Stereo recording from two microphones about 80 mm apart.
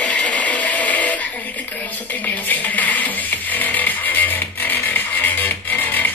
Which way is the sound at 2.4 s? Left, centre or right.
Left.